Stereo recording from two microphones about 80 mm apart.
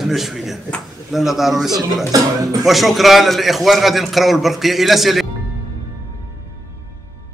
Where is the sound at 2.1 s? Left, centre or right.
Right.